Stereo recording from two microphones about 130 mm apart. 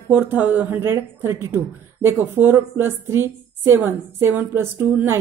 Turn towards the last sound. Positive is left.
turn(degrees=-15)  # may be behind; listen again after turning